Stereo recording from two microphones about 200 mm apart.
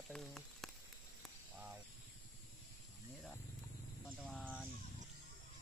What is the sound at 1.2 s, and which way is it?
Snake, 5° right (ahead or behind).